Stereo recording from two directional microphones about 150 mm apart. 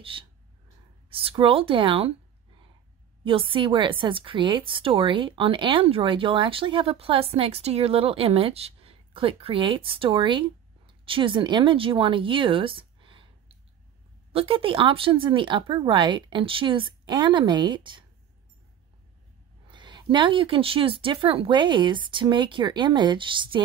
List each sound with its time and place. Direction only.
0.0 s a woman's voice: 35° right (ahead or behind)
3.3 s a woman's voice: 35° right (ahead or behind)
19.7 s a woman's voice: 30° right (ahead or behind)